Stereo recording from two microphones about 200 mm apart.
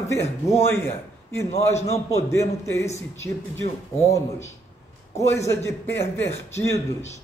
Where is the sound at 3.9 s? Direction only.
15° left (ahead or behind).